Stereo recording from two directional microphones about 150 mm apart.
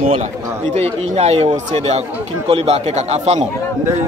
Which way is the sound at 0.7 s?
45° right (ahead or behind).